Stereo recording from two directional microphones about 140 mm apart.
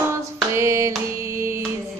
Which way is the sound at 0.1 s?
20° right (ahead or behind).